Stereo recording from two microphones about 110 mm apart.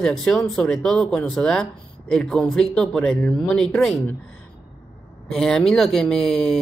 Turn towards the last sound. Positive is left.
turn(degrees=5)  # may be behind; listen again after turning